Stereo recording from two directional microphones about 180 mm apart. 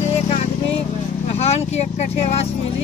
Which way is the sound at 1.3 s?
35° left (ahead or behind).